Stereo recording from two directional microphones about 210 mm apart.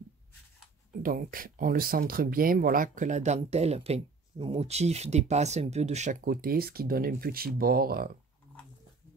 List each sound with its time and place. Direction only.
1.0 s speech: 40° right (ahead or behind)